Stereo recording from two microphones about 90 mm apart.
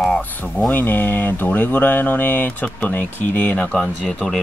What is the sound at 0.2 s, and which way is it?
Speech, 20° left (ahead or behind).